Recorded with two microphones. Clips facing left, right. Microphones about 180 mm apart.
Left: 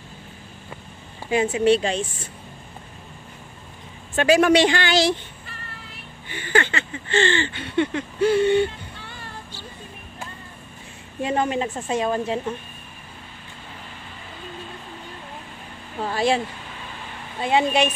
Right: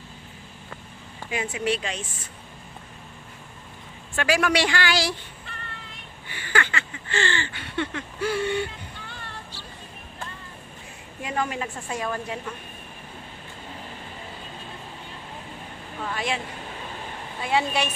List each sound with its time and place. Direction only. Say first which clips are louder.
1.3 s speech: left 9 dB; 30° left (ahead or behind)
4.1 s speech: left 7 dB; 20° left (ahead or behind)
6.2 s speech: left 5 dB; 20° left (ahead or behind)
11.2 s speech: left 6 dB; 25° left (ahead or behind)
16.0 s speech: left 8 dB; 35° left (ahead or behind)
17.4 s speech: left 5 dB; 20° left (ahead or behind)